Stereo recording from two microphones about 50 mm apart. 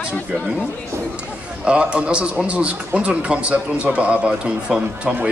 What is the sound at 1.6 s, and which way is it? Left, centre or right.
A man's voice, right.